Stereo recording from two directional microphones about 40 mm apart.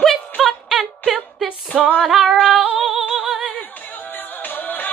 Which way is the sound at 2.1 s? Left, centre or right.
Centre.